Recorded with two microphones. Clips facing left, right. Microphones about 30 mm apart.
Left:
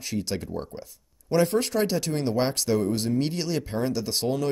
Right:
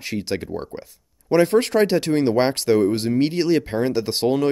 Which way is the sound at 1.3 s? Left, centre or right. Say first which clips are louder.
Right 6 dB; right.